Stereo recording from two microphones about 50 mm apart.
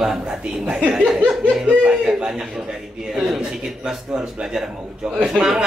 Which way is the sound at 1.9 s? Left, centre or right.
Centre.